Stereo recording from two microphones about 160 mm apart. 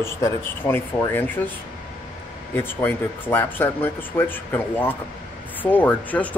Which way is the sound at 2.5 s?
15° left (ahead or behind).